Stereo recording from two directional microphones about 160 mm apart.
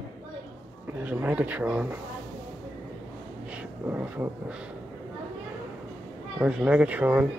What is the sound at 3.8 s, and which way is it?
Speech, 15° right (ahead or behind).